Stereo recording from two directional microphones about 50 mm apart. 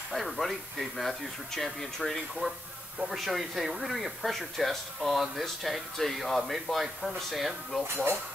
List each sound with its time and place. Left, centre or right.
0.1 s speech: centre
2.4 s speech: centre
7.9 s speech: right